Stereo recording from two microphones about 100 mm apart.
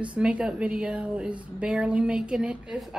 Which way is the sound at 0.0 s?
10° right (ahead or behind).